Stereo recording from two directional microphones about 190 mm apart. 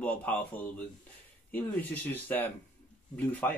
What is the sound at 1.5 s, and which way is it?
Speech, 10° left (ahead or behind).